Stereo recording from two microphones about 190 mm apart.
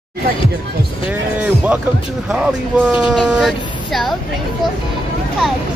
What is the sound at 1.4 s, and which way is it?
Music, 5° right (ahead or behind).